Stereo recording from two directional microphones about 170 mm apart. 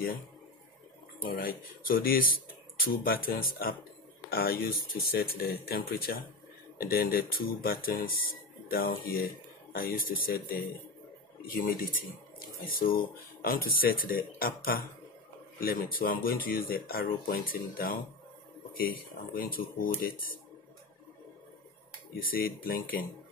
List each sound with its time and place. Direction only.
1.2 s speech: 60° left (ahead or behind)
11.4 s speech: 55° left (ahead or behind)
22.2 s speech: 60° left (ahead or behind)